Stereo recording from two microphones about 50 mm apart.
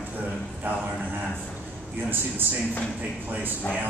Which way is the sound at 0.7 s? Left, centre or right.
Right.